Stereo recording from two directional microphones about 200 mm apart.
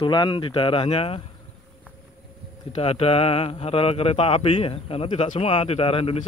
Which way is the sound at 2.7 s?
30° left (ahead or behind).